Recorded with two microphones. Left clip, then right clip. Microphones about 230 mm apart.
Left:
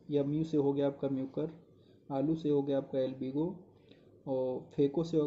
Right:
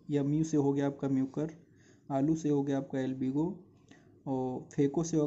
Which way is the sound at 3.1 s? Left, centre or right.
Right.